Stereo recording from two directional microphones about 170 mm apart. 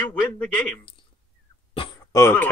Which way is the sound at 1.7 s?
30° left (ahead or behind).